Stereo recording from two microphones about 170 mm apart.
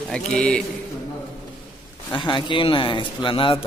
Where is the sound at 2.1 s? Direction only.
30° left (ahead or behind).